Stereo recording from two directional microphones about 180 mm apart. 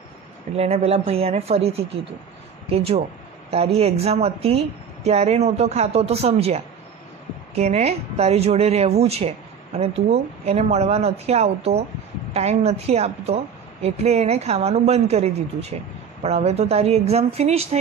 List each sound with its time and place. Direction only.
0.6 s speech: 35° right (ahead or behind)